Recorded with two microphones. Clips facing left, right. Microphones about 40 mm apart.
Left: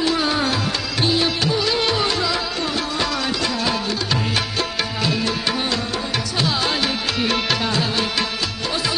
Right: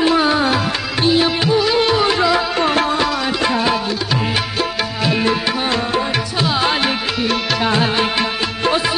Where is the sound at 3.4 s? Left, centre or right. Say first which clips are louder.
Right 8 dB; right.